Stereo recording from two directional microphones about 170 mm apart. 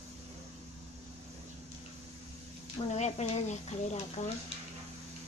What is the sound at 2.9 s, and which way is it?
Speech, 40° left (ahead or behind).